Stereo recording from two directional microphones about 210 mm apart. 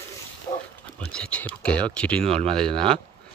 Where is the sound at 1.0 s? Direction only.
5° left (ahead or behind).